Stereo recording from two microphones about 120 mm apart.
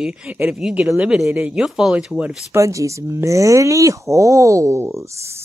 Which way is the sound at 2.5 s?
25° right (ahead or behind).